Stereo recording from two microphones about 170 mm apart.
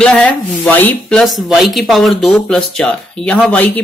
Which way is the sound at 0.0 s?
5° left (ahead or behind).